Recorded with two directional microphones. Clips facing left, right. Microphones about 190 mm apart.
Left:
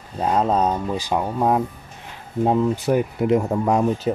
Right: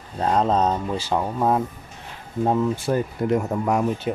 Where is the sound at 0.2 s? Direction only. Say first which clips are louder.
Left 1 dB; 10° left (ahead or behind).